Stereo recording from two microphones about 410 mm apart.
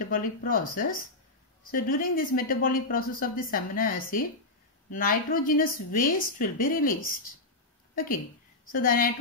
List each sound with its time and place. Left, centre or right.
0.0 s speech: centre
7.9 s a woman's voice: left